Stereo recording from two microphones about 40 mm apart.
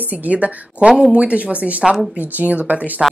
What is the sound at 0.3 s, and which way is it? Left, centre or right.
A woman's voice, right.